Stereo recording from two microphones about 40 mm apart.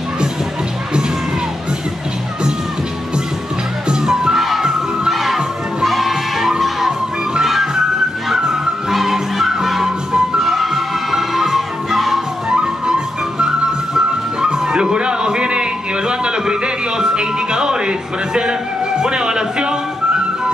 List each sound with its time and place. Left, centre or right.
3.9 s music: centre
4.4 s children shouting: centre
7.4 s music: centre
8.9 s music: centre
9.8 s music: centre
10.4 s music: centre
12.4 s music: right